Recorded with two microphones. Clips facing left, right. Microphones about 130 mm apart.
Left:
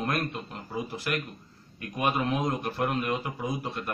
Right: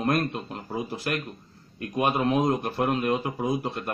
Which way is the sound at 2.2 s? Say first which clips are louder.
Right 5 dB; 40° right (ahead or behind).